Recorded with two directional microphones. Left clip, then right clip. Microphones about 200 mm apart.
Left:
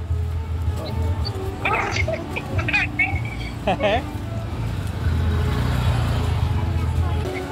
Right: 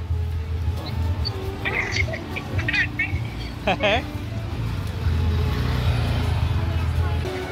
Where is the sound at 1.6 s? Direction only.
45° left (ahead or behind).